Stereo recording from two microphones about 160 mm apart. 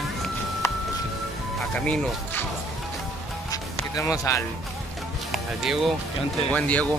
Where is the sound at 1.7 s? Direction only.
5° left (ahead or behind).